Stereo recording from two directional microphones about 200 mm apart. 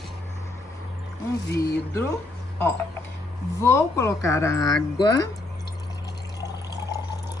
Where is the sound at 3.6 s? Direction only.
15° left (ahead or behind).